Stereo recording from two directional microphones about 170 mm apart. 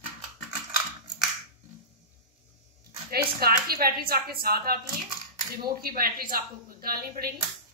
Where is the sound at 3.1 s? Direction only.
65° right (ahead or behind).